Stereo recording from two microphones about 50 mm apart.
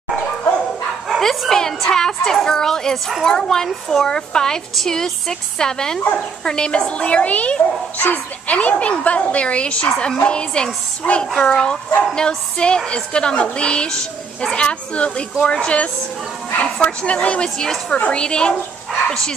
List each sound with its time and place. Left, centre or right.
1.5 s a woman's voice: centre
17.6 s speech: centre
17.9 s speech: left